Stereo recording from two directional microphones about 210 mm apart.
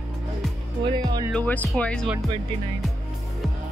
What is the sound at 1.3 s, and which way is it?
Speech, 5° left (ahead or behind).